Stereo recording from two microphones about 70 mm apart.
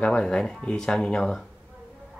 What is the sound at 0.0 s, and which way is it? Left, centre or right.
Speech, centre.